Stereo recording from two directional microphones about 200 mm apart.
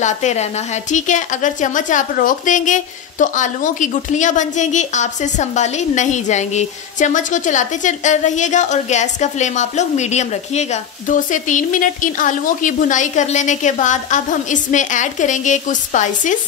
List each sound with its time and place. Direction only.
0.0 s a woman's voice: 35° left (ahead or behind)